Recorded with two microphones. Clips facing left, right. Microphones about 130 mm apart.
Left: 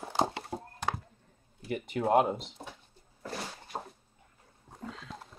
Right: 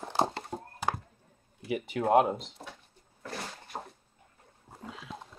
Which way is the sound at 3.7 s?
25° left (ahead or behind).